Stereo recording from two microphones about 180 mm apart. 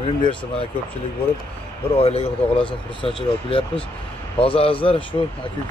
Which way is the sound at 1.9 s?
35° left (ahead or behind).